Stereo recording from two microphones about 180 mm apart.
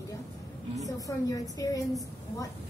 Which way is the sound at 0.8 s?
20° left (ahead or behind).